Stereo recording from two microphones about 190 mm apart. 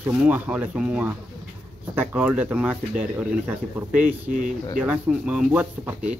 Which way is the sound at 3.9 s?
45° right (ahead or behind).